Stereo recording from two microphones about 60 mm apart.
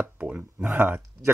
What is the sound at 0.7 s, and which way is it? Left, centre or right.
Speech, right.